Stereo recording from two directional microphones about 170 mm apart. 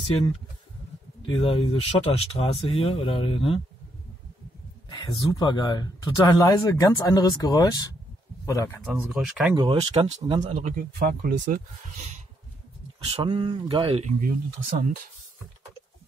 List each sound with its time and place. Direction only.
1.2 s speech: 35° left (ahead or behind)
4.8 s speech: 25° left (ahead or behind)
8.9 s speech: 5° right (ahead or behind)
9.6 s speech: 35° right (ahead or behind)
10.6 s speech: 60° right (ahead or behind)
13.0 s speech: 30° right (ahead or behind)